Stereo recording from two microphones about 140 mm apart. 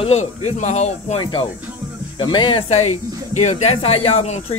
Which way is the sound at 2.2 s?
35° left (ahead or behind).